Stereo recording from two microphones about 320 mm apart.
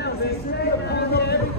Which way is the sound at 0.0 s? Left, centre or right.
Left.